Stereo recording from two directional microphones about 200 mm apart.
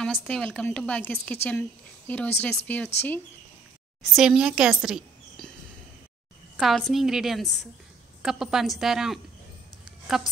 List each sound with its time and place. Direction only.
0.0 s a woman's voice: centre (ahead or behind)
4.2 s a woman's voice: 5° right (ahead or behind)
6.5 s a woman's voice: centre (ahead or behind)